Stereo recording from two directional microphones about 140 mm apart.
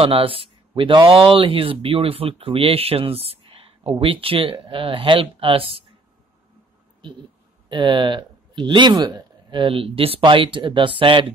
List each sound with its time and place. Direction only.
0.0 s speech: 40° right (ahead or behind)
7.7 s speech: 35° right (ahead or behind)